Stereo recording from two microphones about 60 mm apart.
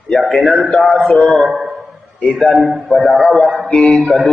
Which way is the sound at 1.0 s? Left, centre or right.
Centre.